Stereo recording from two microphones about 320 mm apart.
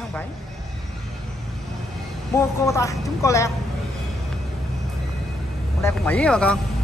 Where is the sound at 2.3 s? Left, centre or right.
Centre.